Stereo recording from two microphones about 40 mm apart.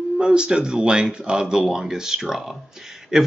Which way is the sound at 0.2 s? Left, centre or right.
Right.